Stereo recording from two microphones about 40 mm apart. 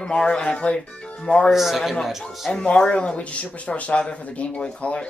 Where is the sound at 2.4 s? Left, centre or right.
Left.